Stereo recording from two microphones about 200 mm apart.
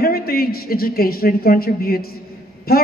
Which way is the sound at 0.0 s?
50° left (ahead or behind).